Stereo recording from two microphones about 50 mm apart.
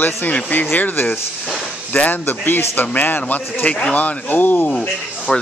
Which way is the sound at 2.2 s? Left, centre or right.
Left.